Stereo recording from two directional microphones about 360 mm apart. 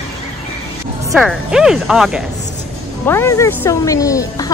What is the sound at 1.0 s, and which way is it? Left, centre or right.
A woman's voice, centre.